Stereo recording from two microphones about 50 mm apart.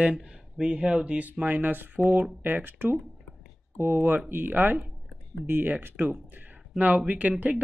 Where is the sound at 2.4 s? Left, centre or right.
Right.